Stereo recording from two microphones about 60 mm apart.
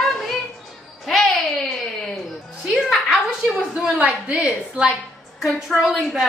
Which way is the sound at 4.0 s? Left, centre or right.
Right.